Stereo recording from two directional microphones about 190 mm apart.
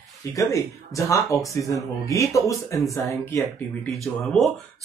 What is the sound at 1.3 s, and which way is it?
Speech, centre (ahead or behind).